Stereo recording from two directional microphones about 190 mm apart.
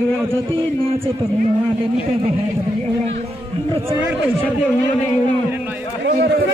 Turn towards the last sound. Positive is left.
turn(degrees=-55)  # may be behind; listen again after turning